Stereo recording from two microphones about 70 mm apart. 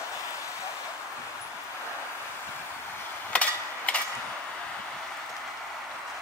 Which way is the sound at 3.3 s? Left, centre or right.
Centre.